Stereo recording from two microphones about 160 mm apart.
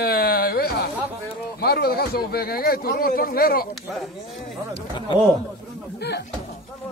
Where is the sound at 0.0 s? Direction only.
80° left.